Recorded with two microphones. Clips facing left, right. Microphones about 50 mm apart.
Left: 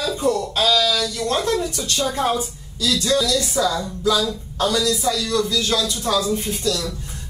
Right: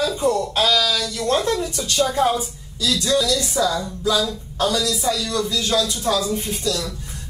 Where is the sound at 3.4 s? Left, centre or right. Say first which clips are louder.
Even; centre.